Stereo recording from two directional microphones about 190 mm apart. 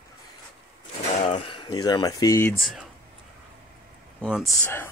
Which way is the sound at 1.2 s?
25° left (ahead or behind).